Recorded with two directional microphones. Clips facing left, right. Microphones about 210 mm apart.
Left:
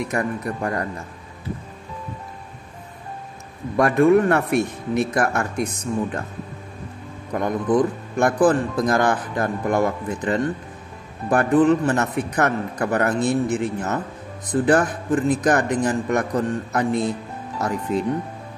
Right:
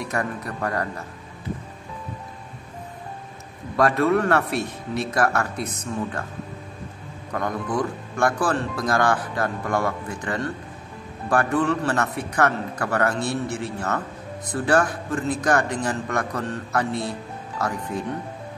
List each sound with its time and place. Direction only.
0.1 s speech: 25° left (ahead or behind)
3.7 s a man's voice: 15° left (ahead or behind)
4.5 s speech: 55° left (ahead or behind)
5.1 s a man's voice: 15° left (ahead or behind)
7.3 s speech: 20° left (ahead or behind)